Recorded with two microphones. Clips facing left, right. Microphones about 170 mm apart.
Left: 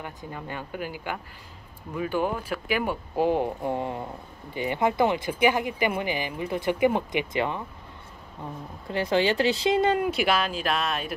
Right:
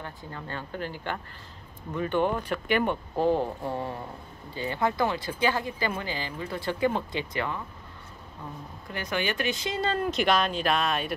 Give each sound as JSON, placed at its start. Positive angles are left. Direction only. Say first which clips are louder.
{"t": 0.0, "sound": "speech", "louder": "left 2 dB", "side_deg": 15}
{"t": 8.8, "sound": "speech", "louder": "left 7 dB", "side_deg": 25}